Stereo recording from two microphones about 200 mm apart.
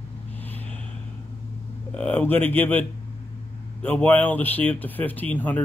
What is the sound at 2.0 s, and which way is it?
Speech, 5° left (ahead or behind).